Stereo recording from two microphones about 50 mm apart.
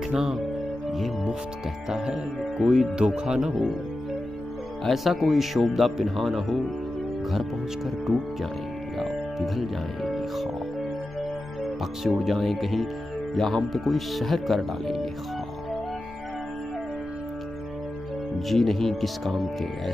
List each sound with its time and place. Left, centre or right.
0.1 s speech: centre
1.9 s speech: centre
4.8 s speech: centre
11.6 s speech: centre
18.5 s speech: centre